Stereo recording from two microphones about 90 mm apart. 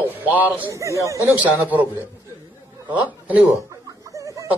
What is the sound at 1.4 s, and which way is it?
Speech, 20° right (ahead or behind).